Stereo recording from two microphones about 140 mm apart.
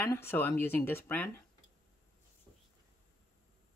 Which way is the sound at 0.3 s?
15° left (ahead or behind).